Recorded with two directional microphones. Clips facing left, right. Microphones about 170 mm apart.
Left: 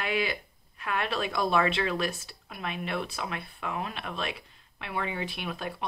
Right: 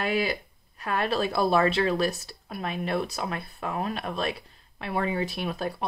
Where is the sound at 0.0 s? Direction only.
40° right (ahead or behind).